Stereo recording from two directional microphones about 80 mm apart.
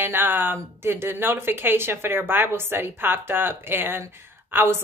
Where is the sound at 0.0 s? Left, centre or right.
Right.